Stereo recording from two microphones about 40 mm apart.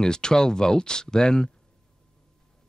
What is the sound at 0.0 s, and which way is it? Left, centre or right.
Speech, centre.